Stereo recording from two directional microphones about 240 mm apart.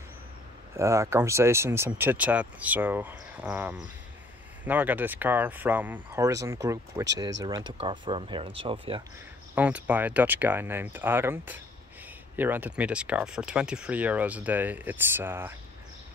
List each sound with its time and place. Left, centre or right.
0.7 s speech: centre
9.6 s speech: centre